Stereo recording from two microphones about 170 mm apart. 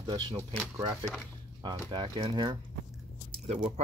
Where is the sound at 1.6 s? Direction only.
30° right (ahead or behind).